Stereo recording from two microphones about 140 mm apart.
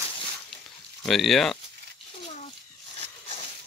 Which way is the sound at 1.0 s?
Centre (ahead or behind).